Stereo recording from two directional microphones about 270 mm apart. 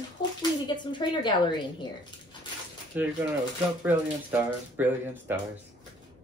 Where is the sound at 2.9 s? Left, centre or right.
Centre.